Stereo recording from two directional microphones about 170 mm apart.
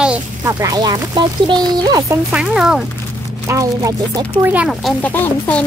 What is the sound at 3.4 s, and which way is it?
Speech, 20° right (ahead or behind).